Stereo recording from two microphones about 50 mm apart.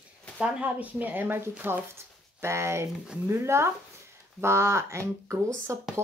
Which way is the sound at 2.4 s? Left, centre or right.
Right.